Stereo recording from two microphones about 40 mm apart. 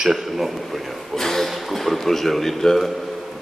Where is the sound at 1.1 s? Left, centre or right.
Centre.